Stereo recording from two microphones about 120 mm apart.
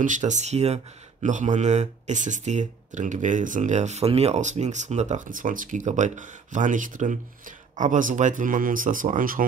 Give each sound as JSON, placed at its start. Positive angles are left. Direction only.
{"t": 0.0, "sound": "speech", "side_deg": -90}
{"t": 1.2, "sound": "speech", "side_deg": -90}